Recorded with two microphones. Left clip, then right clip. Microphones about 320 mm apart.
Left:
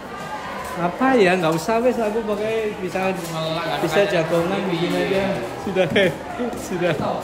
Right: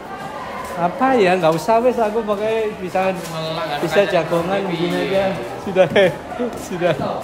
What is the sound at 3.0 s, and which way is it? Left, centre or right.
Speech, centre.